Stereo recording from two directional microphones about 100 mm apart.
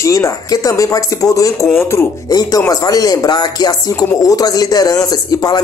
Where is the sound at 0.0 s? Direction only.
30° left (ahead or behind).